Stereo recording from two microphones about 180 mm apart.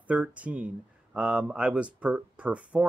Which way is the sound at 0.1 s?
5° right (ahead or behind).